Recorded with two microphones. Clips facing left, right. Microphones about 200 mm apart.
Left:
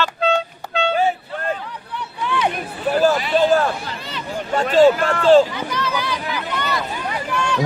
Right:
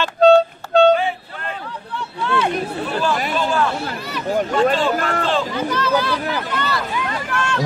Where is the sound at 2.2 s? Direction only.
15° left (ahead or behind).